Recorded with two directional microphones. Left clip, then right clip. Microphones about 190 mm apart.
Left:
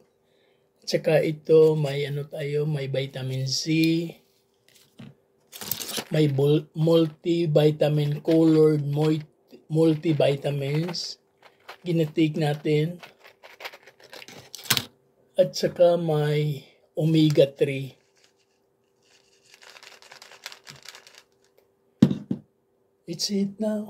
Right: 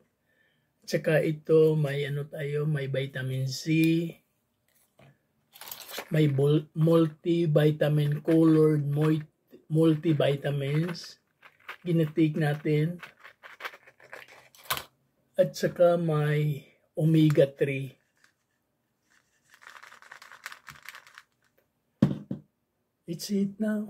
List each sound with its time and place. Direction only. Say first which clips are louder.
0.8 s speech: left 4 dB; 5° right (ahead or behind)
5.5 s a sound: left 9 dB; 35° left (ahead or behind)
6.1 s speech: left 3 dB; centre (ahead or behind)
10.9 s a sound: left 7 dB; 25° right (ahead or behind)
11.8 s speech: left 3 dB; centre (ahead or behind)
12.9 s a sound: left 1 dB; 20° right (ahead or behind)
15.3 s speech: left 4 dB; 5° right (ahead or behind)
20.1 s crumpling: left 1 dB; 10° right (ahead or behind)
23.0 s speech: left 4 dB; 5° right (ahead or behind)